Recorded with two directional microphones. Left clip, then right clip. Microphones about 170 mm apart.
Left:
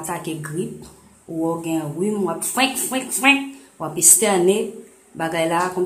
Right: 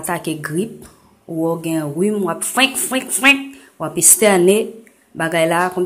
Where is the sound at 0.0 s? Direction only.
25° right (ahead or behind).